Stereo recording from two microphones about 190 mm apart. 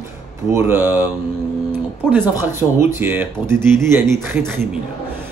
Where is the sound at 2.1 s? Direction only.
10° right (ahead or behind).